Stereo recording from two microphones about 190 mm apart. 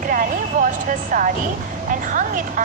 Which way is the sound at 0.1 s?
45° right (ahead or behind).